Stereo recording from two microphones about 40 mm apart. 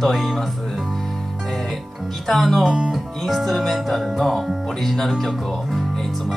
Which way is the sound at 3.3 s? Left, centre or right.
Centre.